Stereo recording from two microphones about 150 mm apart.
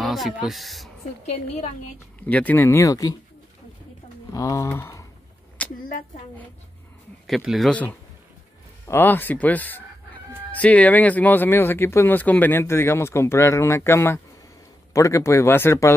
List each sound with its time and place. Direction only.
0.0 s speech: centre (ahead or behind)
2.2 s speech: 10° left (ahead or behind)
4.3 s speech: 20° left (ahead or behind)
5.8 s a woman's voice: 70° left (ahead or behind)
7.2 s speech: centre (ahead or behind)
8.8 s speech: 15° left (ahead or behind)